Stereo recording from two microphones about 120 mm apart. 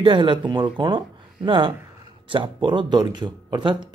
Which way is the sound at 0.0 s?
45° right (ahead or behind).